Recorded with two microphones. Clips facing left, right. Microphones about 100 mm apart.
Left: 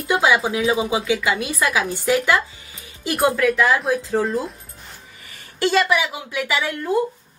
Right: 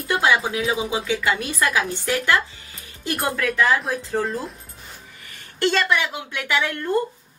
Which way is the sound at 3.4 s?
5° left (ahead or behind).